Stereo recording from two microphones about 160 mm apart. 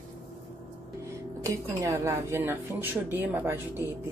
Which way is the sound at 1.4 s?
20° right (ahead or behind).